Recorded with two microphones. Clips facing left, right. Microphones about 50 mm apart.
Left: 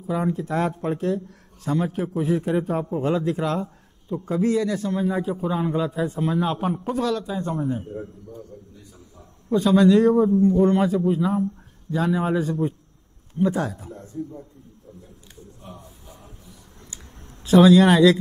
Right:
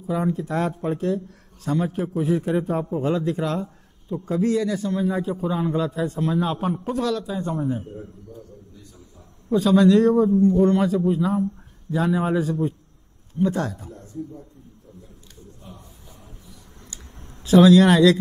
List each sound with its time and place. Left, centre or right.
0.0 s a man's voice: centre
9.5 s a man's voice: centre
13.9 s speech: left
17.4 s a man's voice: centre